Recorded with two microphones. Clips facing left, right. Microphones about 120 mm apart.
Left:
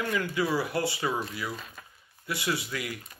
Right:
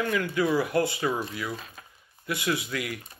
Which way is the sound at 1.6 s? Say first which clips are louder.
Even; 45° right (ahead or behind).